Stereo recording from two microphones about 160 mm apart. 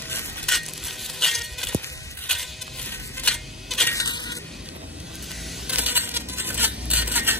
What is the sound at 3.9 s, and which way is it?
Coin, 25° left (ahead or behind).